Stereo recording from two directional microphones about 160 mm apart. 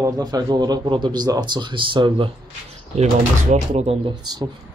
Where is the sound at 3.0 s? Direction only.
45° right (ahead or behind).